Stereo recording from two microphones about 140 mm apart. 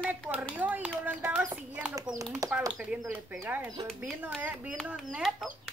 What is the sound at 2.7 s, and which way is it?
Speech, 5° right (ahead or behind).